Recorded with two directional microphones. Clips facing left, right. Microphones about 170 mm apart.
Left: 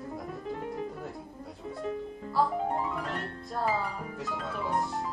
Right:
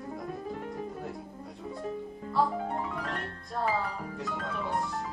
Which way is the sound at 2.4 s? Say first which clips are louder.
Left 1 dB; centre (ahead or behind).